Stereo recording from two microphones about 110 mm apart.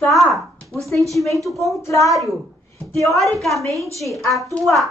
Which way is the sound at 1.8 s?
30° left (ahead or behind).